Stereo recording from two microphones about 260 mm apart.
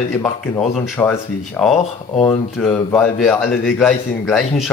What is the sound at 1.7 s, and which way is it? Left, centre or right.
Speech, left.